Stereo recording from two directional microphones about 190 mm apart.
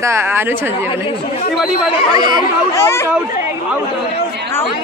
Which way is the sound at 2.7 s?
15° left (ahead or behind).